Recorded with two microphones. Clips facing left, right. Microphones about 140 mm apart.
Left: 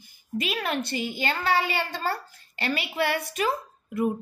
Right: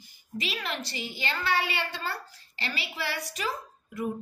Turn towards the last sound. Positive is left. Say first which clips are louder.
# left 6 dB
turn(degrees=60)  # may be behind; listen again after turning